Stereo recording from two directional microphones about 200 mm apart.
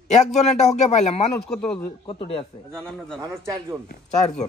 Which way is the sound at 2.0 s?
25° left (ahead or behind).